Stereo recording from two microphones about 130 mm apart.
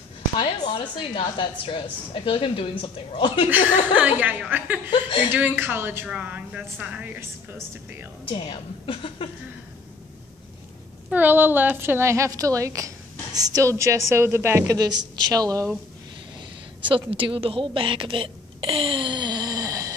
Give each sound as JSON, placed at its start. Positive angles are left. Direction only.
{"t": 0.4, "sound": "a woman's voice", "side_deg": 45}
{"t": 3.4, "sound": "speech", "side_deg": -15}
{"t": 8.4, "sound": "a woman's voice", "side_deg": 45}
{"t": 11.1, "sound": "a woman's voice", "side_deg": -15}
{"t": 16.9, "sound": "a woman's voice", "side_deg": -45}